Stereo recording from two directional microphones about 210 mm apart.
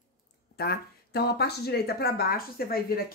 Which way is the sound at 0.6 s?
50° left (ahead or behind).